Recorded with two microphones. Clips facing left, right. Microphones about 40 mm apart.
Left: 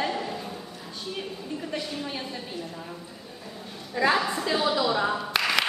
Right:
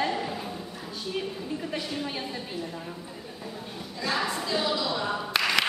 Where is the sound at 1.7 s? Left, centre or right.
Centre.